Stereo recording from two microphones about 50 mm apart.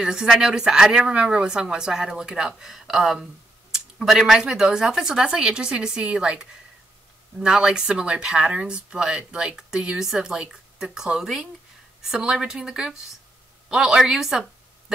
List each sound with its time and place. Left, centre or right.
0.0 s speech: centre
7.4 s speech: centre